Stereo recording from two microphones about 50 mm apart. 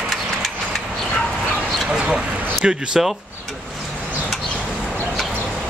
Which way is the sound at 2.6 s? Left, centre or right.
Centre.